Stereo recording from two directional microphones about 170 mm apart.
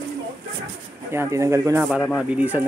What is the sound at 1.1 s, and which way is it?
Speech, 15° right (ahead or behind).